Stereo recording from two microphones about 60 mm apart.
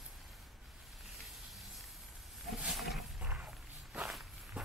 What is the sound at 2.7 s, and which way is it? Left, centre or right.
Roaring cats, centre.